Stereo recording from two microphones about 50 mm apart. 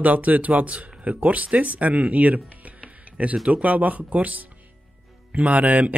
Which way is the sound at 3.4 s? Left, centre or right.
Right.